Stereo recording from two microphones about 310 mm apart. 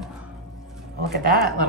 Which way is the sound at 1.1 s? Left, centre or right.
Right.